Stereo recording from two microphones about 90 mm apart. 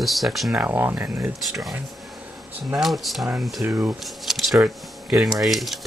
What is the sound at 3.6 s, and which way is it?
Speech, 25° right (ahead or behind).